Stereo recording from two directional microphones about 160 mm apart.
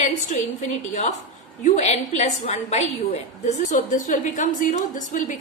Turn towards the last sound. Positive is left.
turn(degrees=50)  # may be behind; listen again after turning